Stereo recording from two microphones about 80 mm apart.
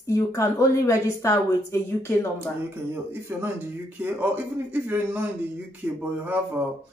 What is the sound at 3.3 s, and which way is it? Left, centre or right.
A man's voice, right.